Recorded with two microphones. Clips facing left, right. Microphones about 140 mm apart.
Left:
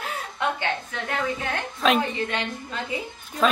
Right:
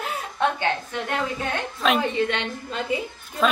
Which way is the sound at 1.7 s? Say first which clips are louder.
Left 1 dB; centre (ahead or behind).